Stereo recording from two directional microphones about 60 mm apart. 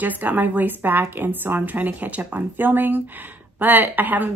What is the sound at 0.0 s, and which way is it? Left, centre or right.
A woman's voice, right.